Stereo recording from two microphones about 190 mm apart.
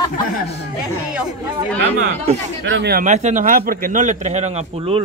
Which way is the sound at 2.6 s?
70° right (ahead or behind).